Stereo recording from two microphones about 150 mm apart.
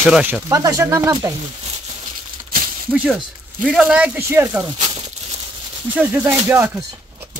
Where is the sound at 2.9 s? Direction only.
5° right (ahead or behind).